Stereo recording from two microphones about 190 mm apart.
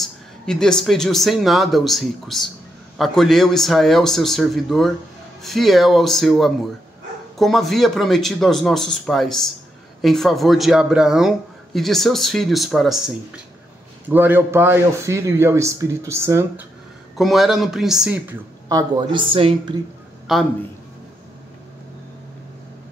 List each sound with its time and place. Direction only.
0.0 s a man's voice: 5° left (ahead or behind); by 16.6 s 15° right (ahead or behind)
17.2 s speech: centre (ahead or behind)
18.7 s speech: 20° right (ahead or behind)
20.3 s speech: centre (ahead or behind)